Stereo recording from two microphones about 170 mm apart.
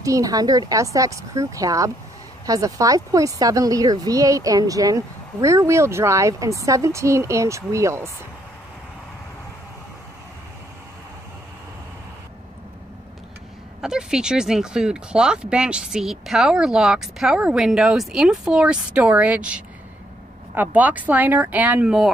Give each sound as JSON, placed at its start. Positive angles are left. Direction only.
{"t": 0.0, "sound": "speech", "side_deg": -20}
{"t": 13.7, "sound": "speech", "side_deg": -5}